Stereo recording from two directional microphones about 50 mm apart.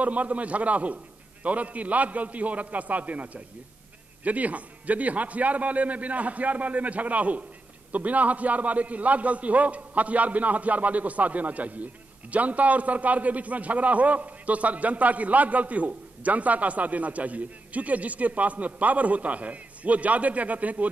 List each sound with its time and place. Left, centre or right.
0.0 s a man's voice: right